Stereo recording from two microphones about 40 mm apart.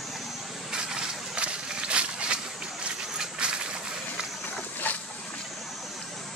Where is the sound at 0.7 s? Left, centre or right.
Centre.